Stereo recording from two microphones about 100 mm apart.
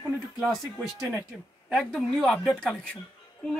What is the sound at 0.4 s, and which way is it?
Speech, 5° right (ahead or behind).